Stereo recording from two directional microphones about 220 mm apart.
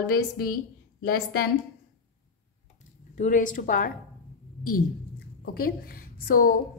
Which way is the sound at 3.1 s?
35° left (ahead or behind).